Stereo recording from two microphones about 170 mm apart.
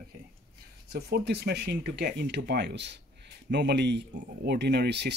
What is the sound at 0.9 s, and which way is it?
A man's voice, 75° right (ahead or behind).